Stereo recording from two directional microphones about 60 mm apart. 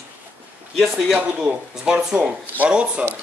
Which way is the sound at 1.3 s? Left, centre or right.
Centre.